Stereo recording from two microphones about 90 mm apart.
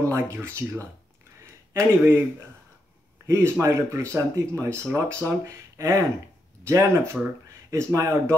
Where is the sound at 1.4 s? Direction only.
30° right (ahead or behind).